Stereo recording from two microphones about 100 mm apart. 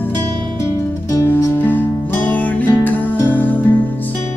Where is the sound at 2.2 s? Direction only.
15° left (ahead or behind).